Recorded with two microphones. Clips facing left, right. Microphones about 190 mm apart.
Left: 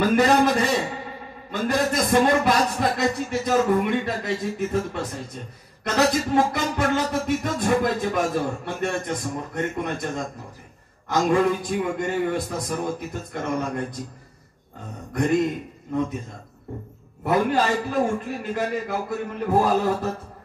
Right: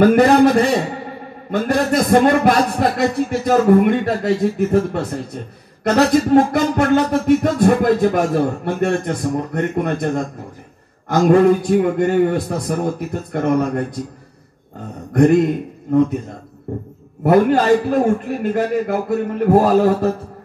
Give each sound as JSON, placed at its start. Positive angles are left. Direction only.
{"t": 0.0, "sound": "a man's voice", "side_deg": -55}
{"t": 1.5, "sound": "music", "side_deg": -60}
{"t": 17.2, "sound": "music", "side_deg": -60}